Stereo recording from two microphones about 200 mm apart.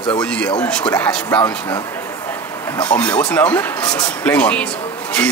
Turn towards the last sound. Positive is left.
turn(degrees=5)  # may be behind; listen again after turning